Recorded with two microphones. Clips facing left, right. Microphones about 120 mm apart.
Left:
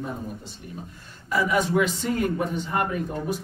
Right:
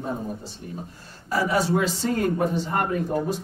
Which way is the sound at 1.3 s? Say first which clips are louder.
Even; 35° right (ahead or behind).